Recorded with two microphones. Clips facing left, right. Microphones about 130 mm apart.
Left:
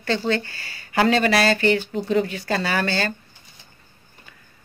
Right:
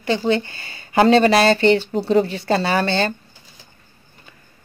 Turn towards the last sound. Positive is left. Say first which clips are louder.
# right 4 dB
turn(degrees=-25)  # may be behind; listen again after turning